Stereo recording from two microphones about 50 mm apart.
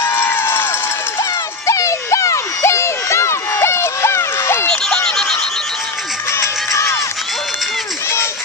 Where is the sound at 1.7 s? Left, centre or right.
Left.